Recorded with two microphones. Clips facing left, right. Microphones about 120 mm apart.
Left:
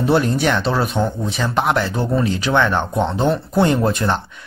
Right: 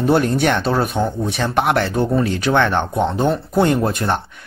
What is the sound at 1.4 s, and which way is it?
Speech, 60° right (ahead or behind).